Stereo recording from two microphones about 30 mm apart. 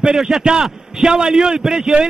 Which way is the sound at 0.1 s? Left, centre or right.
Centre.